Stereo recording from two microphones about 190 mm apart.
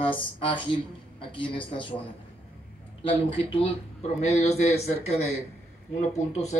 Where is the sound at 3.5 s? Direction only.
30° left (ahead or behind).